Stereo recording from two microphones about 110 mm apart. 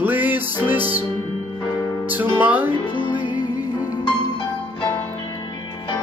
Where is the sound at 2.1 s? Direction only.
15° right (ahead or behind).